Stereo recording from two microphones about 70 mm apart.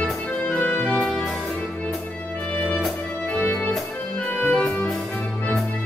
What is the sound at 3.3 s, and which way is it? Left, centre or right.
Music, centre.